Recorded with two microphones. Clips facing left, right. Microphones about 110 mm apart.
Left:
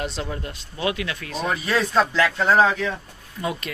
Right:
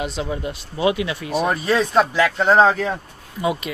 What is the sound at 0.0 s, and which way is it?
Speech, 5° right (ahead or behind).